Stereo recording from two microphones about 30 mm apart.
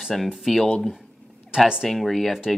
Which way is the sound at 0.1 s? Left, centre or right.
Centre.